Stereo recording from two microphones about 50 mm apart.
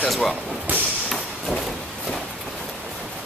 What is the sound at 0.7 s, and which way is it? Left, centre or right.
Thump, right.